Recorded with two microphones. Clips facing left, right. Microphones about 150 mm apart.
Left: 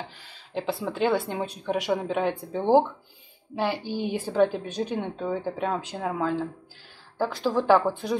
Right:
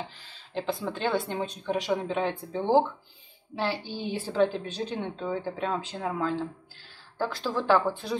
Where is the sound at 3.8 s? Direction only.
15° left (ahead or behind).